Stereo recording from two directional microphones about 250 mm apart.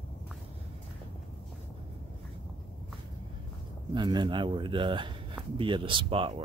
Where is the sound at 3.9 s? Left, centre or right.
Centre.